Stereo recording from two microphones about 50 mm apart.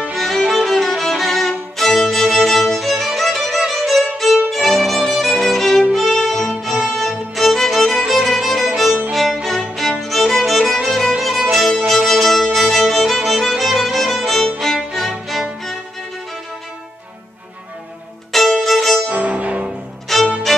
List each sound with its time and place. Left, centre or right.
0.1 s violin: centre
5.9 s music: centre
8.1 s violin: centre
9.1 s music: centre
18.3 s music: centre
19.0 s music: right
20.1 s music: centre